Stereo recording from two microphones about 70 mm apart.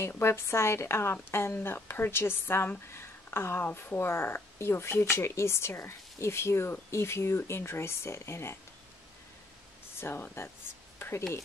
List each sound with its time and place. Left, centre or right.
0.1 s speech: left
9.9 s speech: left
11.0 s a sound: left